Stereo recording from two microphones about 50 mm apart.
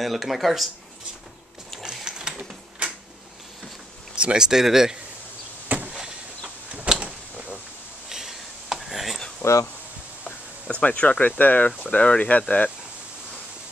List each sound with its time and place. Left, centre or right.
0.0 s speech: centre
1.8 s sewing machine: centre
4.1 s speech: centre
5.7 s a sound: right
8.1 s a sound: centre
9.4 s speech: left
10.2 s speech: left